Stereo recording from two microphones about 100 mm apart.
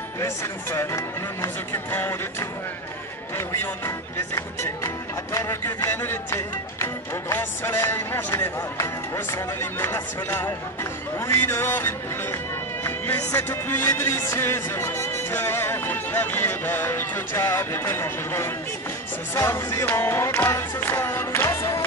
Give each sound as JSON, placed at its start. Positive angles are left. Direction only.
{"t": 0.2, "sound": "music", "side_deg": 25}
{"t": 4.4, "sound": "music", "side_deg": 30}
{"t": 21.5, "sound": "music", "side_deg": 35}